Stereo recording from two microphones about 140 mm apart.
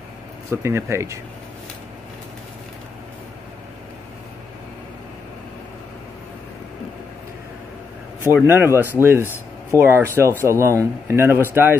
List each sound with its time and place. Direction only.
0.5 s speech: 20° right (ahead or behind)
8.2 s speech: 15° right (ahead or behind)